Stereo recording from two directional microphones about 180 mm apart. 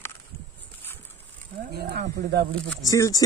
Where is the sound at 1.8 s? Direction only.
65° right (ahead or behind).